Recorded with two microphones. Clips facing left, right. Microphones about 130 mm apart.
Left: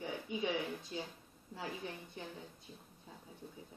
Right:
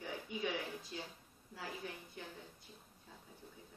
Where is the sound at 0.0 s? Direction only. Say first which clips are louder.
Left 3 dB; 20° left (ahead or behind).